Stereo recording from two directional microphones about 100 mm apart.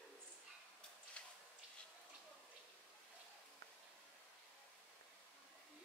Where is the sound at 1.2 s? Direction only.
10° left (ahead or behind).